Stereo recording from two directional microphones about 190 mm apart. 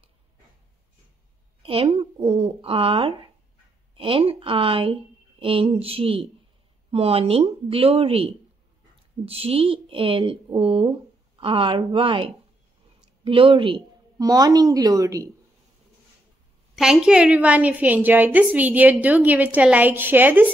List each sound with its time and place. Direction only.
1.6 s a woman's voice: 30° right (ahead or behind)
16.7 s a woman's voice: 5° right (ahead or behind)